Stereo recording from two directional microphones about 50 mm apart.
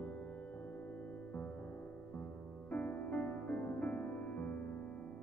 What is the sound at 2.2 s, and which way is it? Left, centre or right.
Music, left.